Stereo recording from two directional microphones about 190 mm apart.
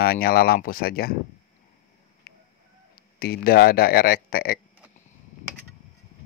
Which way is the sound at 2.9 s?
55° left (ahead or behind).